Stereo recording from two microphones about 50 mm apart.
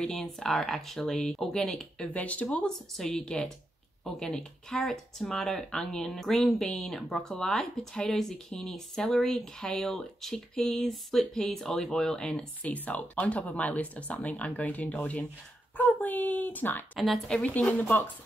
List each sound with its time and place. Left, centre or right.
0.0 s speech: centre
2.1 s speech: left
2.6 s speech: centre
12.6 s speech: left
17.3 s speech: left